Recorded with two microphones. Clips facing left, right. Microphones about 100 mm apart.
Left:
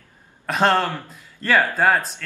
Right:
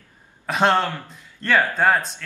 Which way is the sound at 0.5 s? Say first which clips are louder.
Even; centre (ahead or behind).